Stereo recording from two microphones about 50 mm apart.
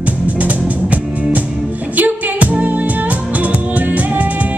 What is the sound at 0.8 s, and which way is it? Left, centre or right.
Music, centre.